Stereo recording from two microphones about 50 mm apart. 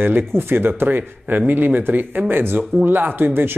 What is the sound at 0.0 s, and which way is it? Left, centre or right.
Speech, right.